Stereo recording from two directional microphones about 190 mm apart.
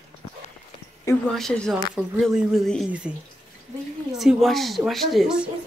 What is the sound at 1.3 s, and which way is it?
Speech, centre (ahead or behind).